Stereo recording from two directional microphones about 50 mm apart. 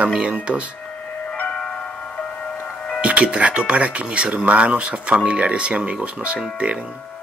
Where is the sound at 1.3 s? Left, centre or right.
Left.